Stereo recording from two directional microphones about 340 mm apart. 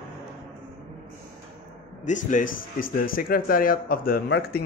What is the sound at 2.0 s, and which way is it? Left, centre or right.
A man's voice, left.